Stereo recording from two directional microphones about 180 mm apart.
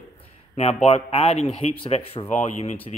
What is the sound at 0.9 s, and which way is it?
Speech, 35° left (ahead or behind).